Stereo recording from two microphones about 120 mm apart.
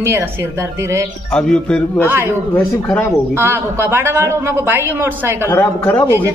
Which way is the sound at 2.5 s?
15° left (ahead or behind).